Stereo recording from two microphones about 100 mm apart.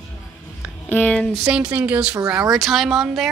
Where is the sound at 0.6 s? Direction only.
20° left (ahead or behind).